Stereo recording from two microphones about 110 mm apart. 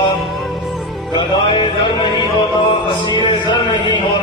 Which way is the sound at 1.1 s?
45° left (ahead or behind).